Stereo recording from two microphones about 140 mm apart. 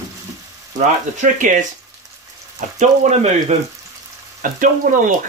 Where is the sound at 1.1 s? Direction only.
65° right (ahead or behind).